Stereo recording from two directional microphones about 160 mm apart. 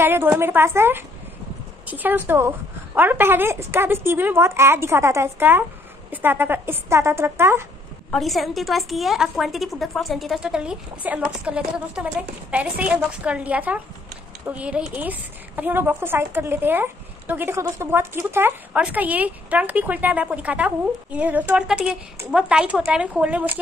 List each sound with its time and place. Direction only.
0.0 s a woman's voice: 15° right (ahead or behind)
8.1 s a woman's voice: centre (ahead or behind)